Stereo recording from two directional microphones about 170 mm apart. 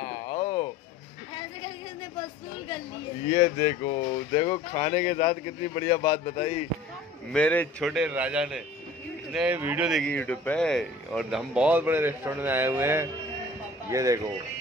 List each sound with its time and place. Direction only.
0.0 s a sound: 35° left (ahead or behind)
3.3 s speech: 35° left (ahead or behind)
6.2 s speech: 40° left (ahead or behind)
7.3 s a man's voice: 5° left (ahead or behind); by 14.2 s 20° right (ahead or behind)